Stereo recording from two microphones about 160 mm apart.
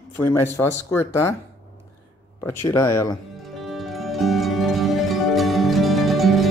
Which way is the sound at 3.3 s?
Centre (ahead or behind).